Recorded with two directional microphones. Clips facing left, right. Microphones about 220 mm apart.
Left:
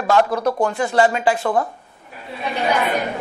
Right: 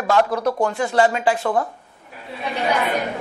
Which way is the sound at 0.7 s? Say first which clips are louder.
Left 1 dB; 10° left (ahead or behind).